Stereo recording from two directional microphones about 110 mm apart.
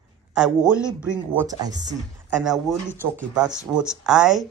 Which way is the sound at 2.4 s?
5° right (ahead or behind).